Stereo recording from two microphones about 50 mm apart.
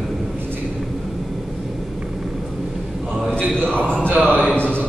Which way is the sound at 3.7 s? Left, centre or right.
Left.